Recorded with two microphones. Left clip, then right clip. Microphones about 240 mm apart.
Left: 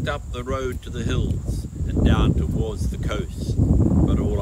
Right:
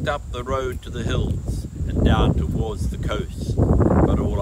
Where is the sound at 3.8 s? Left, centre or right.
Right.